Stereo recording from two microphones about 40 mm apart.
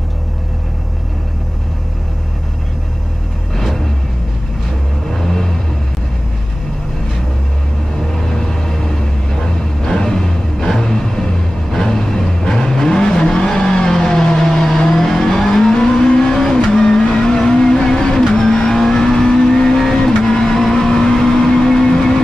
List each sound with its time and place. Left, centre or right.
3.5 s vehicle: centre
5.1 s vehicle: centre
8.1 s vehicle: centre
9.8 s music: centre
16.3 s vehicle: centre